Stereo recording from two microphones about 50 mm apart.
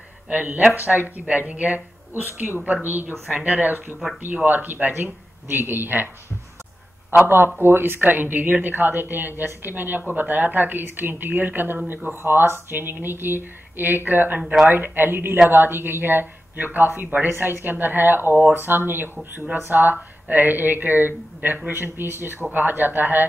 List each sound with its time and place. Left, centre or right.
0.3 s a woman's voice: right
2.2 s a woman's voice: right
7.2 s a woman's voice: right
14.4 s speech: centre
14.7 s a woman's voice: right